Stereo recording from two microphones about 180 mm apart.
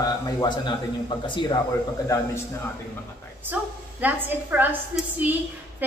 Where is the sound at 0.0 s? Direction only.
25° left (ahead or behind).